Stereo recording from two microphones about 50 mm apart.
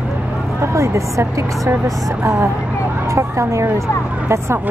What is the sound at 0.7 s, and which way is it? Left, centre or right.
A woman's voice, right.